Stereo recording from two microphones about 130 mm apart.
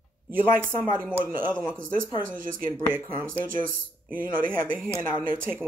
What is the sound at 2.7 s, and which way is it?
Speech, 20° right (ahead or behind).